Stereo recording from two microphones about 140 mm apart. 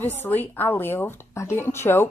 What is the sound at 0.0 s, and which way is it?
Speech, 15° left (ahead or behind).